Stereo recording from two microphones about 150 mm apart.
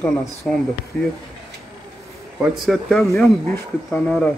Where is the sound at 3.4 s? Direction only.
15° left (ahead or behind).